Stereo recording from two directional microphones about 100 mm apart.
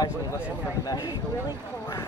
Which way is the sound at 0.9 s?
40° left (ahead or behind).